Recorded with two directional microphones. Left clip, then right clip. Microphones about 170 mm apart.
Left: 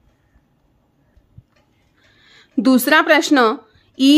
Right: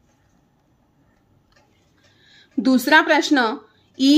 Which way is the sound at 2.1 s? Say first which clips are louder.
Left 4 dB; 40° left (ahead or behind).